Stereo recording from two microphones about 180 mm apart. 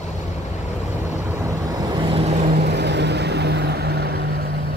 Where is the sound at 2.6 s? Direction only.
70° right (ahead or behind).